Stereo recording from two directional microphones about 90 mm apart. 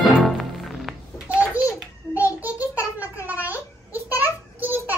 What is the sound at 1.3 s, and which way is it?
Babbling, 20° right (ahead or behind).